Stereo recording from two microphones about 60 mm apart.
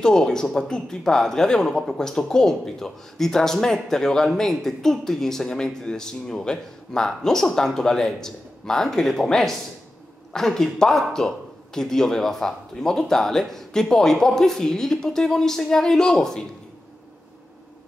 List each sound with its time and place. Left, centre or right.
0.0 s a man's voice: centre